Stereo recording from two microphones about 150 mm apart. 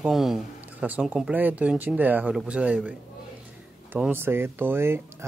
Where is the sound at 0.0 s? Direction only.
Centre (ahead or behind).